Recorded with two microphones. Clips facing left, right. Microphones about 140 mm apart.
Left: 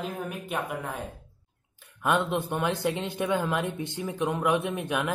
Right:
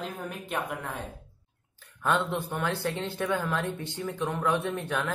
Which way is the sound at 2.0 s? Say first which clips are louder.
Left 2 dB; 15° left (ahead or behind).